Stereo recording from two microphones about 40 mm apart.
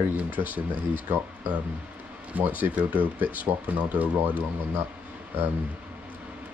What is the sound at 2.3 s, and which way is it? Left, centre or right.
Speech, right.